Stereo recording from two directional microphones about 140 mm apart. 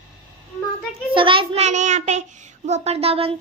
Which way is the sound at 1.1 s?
40° right (ahead or behind).